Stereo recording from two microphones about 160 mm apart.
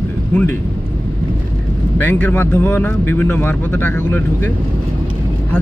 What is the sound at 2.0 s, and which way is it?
Speech, 10° left (ahead or behind).